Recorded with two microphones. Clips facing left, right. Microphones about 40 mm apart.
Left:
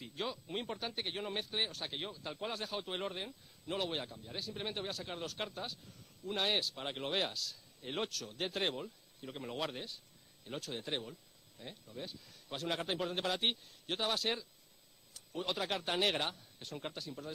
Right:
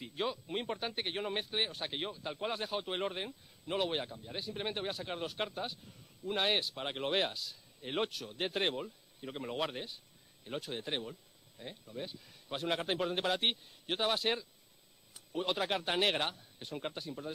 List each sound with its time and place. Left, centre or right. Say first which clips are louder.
0.0 s a man's voice: right 4 dB; centre
13.8 s speech: right 3 dB; centre